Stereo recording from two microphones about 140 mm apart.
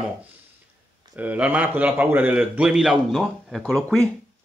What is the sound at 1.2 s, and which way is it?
A man's voice, 10° right (ahead or behind).